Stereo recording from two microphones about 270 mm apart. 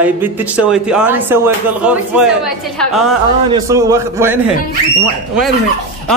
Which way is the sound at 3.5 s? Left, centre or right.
Centre.